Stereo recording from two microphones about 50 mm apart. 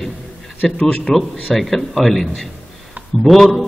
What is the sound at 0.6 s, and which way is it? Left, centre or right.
Speech, centre.